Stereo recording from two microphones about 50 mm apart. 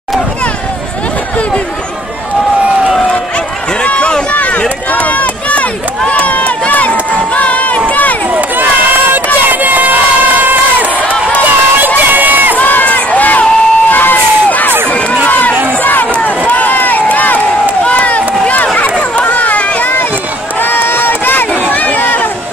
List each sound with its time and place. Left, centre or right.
3.8 s run: left
9.1 s crowd: right
12.1 s run: right
12.5 s crowd: left
15.2 s run: left
15.8 s crowd: left
16.1 s run: left